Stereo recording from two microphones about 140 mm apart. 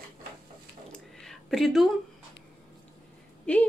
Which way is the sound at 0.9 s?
5° left (ahead or behind).